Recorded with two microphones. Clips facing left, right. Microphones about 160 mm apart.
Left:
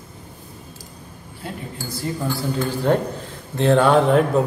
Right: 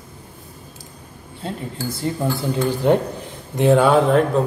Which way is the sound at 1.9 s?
25° right (ahead or behind).